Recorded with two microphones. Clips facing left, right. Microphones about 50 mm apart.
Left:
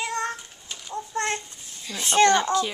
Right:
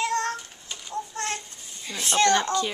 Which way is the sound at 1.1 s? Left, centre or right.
Left.